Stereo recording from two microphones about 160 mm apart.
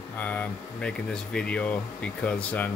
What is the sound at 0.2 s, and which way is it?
Speech, 10° left (ahead or behind).